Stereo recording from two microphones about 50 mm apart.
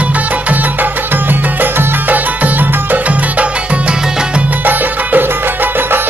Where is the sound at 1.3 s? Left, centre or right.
Right.